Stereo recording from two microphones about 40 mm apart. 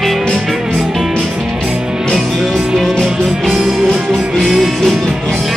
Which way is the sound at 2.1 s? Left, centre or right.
Centre.